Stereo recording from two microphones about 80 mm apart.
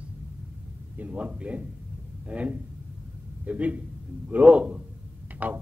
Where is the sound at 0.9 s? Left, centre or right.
Centre.